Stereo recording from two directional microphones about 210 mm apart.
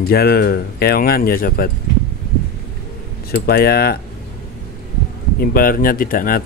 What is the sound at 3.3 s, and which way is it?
Speech, 50° left (ahead or behind).